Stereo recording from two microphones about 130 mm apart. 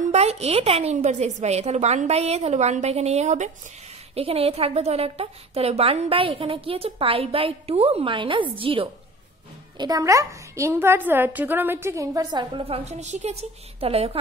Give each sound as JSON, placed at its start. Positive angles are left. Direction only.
{"t": 0.1, "sound": "a woman's voice", "side_deg": -55}
{"t": 4.1, "sound": "a woman's voice", "side_deg": -50}
{"t": 9.8, "sound": "a woman's voice", "side_deg": -30}
{"t": 12.6, "sound": "a woman's voice", "side_deg": -50}